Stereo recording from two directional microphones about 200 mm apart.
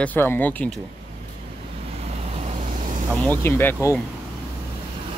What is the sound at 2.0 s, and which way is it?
Vehicle, 30° right (ahead or behind).